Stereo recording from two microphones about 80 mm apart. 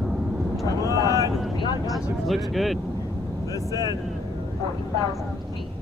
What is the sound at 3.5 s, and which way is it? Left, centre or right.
Speech, left.